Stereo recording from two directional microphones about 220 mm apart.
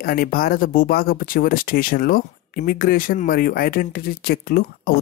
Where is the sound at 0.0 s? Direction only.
45° left (ahead or behind).